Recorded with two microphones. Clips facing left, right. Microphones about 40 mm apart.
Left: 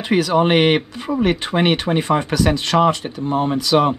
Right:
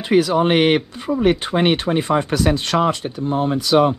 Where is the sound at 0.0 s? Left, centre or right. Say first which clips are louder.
Right 1 dB; left.